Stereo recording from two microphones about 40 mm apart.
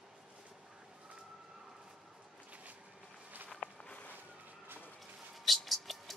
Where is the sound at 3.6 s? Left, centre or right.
Left.